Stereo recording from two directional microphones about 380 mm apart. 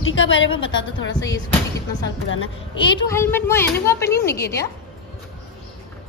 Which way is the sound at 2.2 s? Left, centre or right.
Left.